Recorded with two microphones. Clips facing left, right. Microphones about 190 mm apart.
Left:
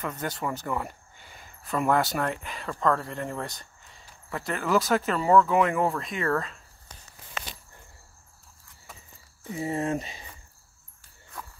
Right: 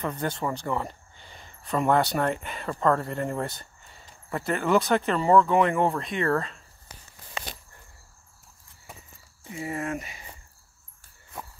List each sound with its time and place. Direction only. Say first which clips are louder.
0.0 s speech: right 3 dB; 5° left (ahead or behind)
6.9 s walk: right 1 dB; 5° right (ahead or behind)
7.4 s walk: right 1 dB; 30° right (ahead or behind)
9.5 s speech: left 3 dB; 30° left (ahead or behind)
11.3 s walk: right 2 dB; 25° right (ahead or behind)